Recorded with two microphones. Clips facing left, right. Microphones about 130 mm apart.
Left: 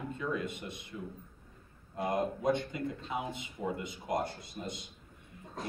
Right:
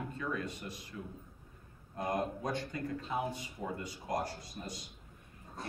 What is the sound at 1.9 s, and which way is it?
Speech, 25° left (ahead or behind).